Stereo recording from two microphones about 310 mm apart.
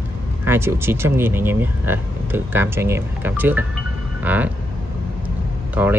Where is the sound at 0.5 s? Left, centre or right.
Centre.